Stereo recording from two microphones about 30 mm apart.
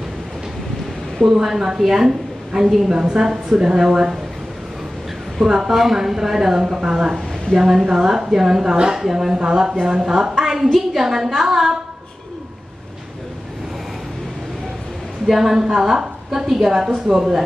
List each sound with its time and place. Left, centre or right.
1.2 s a woman's voice: centre
5.4 s a woman's voice: centre
7.5 s a woman's voice: centre
9.0 s a woman's voice: centre
9.3 s a woman's voice: right; by 11.7 s centre
15.2 s a woman's voice: centre